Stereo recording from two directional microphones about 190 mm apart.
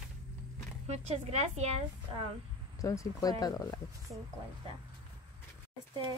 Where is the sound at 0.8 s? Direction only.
35° right (ahead or behind).